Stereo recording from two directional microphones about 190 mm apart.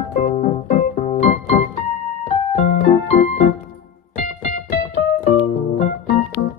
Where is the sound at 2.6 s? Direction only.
40° left (ahead or behind).